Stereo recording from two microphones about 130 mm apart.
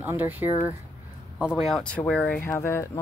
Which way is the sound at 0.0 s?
15° right (ahead or behind).